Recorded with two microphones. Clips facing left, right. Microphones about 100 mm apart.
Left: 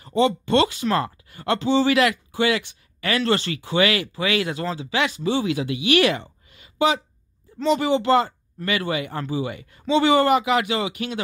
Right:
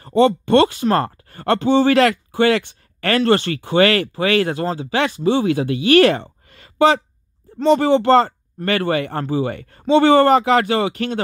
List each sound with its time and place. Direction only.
0.1 s speech: 50° right (ahead or behind)
6.5 s a sound: 60° right (ahead or behind)
7.5 s speech: 55° right (ahead or behind)